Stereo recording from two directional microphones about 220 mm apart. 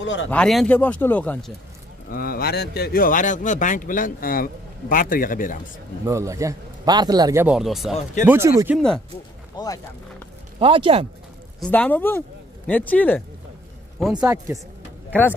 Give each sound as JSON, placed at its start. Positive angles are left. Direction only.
{"t": 0.0, "sound": "speech", "side_deg": 60}
{"t": 0.3, "sound": "speech", "side_deg": 0}
{"t": 2.0, "sound": "speech", "side_deg": 40}
{"t": 6.0, "sound": "a man's voice", "side_deg": -15}
{"t": 7.9, "sound": "speech", "side_deg": 35}
{"t": 8.3, "sound": "a man's voice", "side_deg": -15}
{"t": 8.7, "sound": "speech", "side_deg": 0}
{"t": 9.6, "sound": "speech", "side_deg": 20}
{"t": 10.6, "sound": "speech", "side_deg": -25}
{"t": 11.6, "sound": "speech", "side_deg": 5}
{"t": 14.1, "sound": "a man's voice", "side_deg": -15}